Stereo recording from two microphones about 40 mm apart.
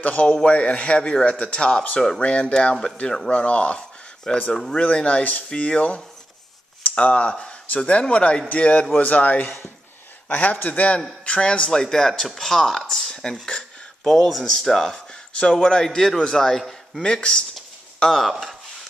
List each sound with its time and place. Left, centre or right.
0.0 s a man's voice: left
4.3 s speech: left
7.0 s a man's voice: left
11.7 s a man's voice: centre
14.0 s a man's voice: centre
15.6 s a man's voice: left
17.0 s speech: left